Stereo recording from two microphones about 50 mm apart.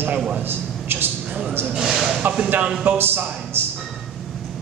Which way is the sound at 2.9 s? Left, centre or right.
Right.